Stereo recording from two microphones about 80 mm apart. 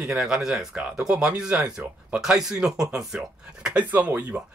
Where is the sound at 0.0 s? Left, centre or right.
Centre.